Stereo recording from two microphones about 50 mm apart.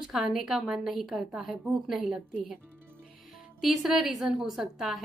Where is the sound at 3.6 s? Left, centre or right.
Centre.